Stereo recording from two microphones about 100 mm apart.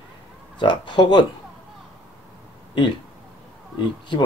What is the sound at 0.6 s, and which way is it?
Speech, 50° left (ahead or behind).